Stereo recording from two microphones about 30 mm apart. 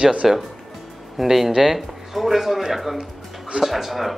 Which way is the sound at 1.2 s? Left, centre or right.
Centre.